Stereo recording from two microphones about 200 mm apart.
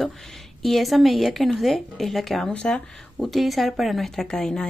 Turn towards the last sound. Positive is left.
turn(degrees=5)  # may be behind; listen again after turning